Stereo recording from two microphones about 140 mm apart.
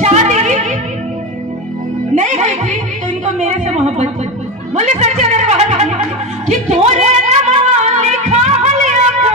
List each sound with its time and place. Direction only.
0.0 s music: 55° right (ahead or behind)
2.1 s music: 55° right (ahead or behind)
3.3 s a sound: 55° right (ahead or behind)
4.7 s music: 55° right (ahead or behind)